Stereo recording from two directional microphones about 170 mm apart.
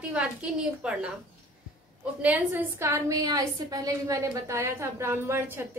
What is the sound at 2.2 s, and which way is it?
A woman's voice, 10° right (ahead or behind).